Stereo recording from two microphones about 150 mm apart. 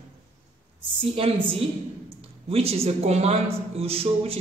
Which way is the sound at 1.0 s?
35° right (ahead or behind).